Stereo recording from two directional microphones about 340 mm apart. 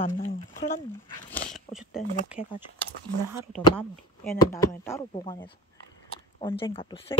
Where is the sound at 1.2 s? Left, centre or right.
Centre.